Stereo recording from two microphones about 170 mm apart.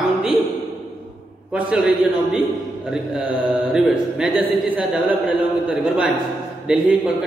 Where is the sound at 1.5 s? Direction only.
10° right (ahead or behind).